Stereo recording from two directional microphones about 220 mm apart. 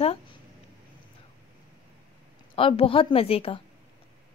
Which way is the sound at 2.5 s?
25° left (ahead or behind).